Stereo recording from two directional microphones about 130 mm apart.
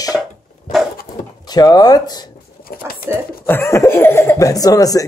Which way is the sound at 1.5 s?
30° left (ahead or behind).